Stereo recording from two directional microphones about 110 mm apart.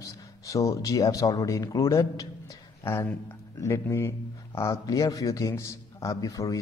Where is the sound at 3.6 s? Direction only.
25° left (ahead or behind).